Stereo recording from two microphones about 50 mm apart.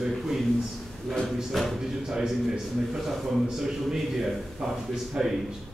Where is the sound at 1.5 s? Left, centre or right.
Centre.